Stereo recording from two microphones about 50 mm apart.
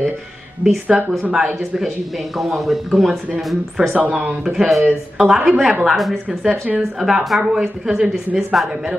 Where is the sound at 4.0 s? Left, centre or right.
Right.